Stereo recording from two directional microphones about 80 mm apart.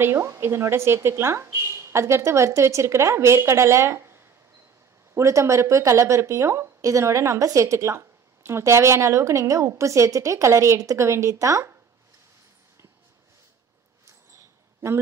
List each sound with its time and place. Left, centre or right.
0.0 s a woman's voice: right